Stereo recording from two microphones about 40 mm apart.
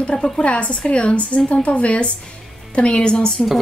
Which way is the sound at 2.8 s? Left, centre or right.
Left.